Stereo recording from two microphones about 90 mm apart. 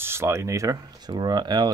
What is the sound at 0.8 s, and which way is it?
Speech, 50° right (ahead or behind).